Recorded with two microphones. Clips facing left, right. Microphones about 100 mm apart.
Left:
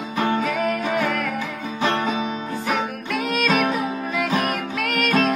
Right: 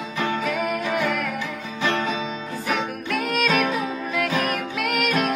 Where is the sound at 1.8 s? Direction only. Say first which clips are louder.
Left 2 dB; 30° left (ahead or behind).